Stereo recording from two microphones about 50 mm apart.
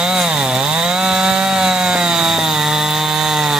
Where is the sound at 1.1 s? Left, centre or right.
Centre.